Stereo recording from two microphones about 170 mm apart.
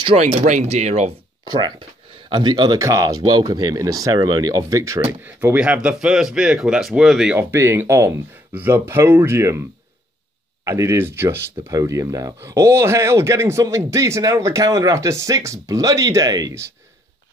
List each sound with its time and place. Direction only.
0.0 s speech: 35° right (ahead or behind)
1.4 s speech: 25° right (ahead or behind); by 7.3 s 5° right (ahead or behind)
7.3 s speech: 15° right (ahead or behind)
10.6 s speech: 15° right (ahead or behind)